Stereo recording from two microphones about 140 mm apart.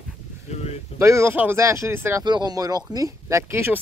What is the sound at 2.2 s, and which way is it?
Speech, 30° right (ahead or behind).